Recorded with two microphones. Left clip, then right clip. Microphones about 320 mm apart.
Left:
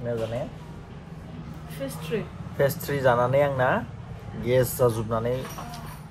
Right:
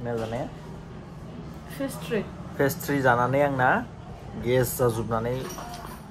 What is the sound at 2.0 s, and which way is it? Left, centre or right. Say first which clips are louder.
A woman's voice: right 1 dB; centre.